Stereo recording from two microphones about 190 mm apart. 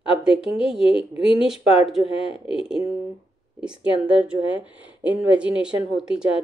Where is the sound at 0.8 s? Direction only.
30° left (ahead or behind).